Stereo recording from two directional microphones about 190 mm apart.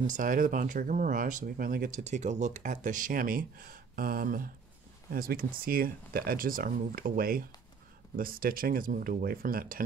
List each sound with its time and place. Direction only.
0.0 s speech: 45° right (ahead or behind)